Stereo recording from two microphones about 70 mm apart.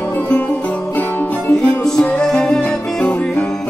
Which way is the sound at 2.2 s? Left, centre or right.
Centre.